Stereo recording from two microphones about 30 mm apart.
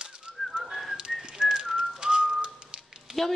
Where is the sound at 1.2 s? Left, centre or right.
Right.